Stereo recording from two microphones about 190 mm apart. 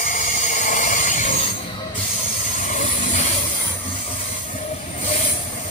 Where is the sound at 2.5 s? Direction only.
40° left (ahead or behind).